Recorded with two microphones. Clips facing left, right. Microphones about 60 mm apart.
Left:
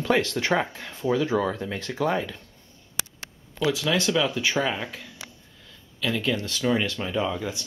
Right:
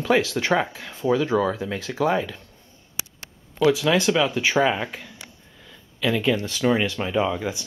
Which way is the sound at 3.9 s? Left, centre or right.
Centre.